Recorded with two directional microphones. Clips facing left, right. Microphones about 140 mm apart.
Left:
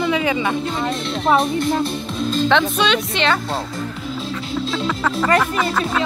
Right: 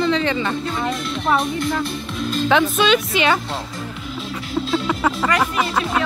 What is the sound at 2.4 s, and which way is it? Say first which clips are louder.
Speech: right 2 dB; 5° right (ahead or behind).